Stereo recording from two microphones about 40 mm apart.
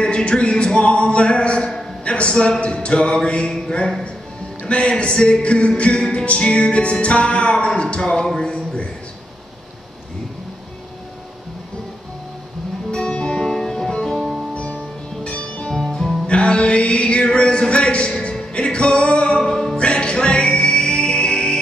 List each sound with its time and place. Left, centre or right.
0.0 s music: left
2.0 s a sound: left
2.6 s music: left
8.1 s speech: centre
8.4 s a man's voice: left
12.9 s music: left
14.1 s music: centre
14.5 s music: left
15.7 s music: centre
16.3 s a sound: left
18.5 s music: left
19.4 s music: centre
19.8 s music: left